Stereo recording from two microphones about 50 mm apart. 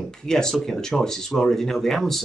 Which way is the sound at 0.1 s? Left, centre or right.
Centre.